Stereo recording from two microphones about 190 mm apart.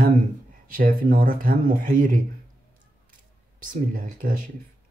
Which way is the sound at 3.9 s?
45° right (ahead or behind).